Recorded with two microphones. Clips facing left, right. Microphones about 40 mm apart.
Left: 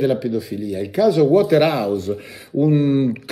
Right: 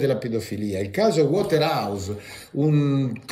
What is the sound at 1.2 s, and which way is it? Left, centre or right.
Speech, left.